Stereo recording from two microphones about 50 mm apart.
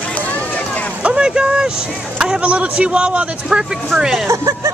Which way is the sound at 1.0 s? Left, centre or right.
Centre.